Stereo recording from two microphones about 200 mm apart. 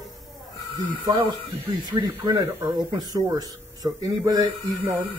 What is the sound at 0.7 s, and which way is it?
Speech, 25° right (ahead or behind).